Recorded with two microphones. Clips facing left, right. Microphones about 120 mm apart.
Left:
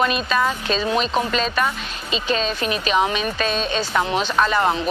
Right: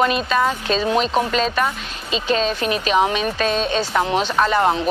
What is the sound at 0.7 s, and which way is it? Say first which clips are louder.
Speech: right 3 dB; 50° right (ahead or behind).